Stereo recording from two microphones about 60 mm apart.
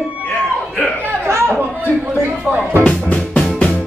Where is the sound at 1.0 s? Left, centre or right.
Right.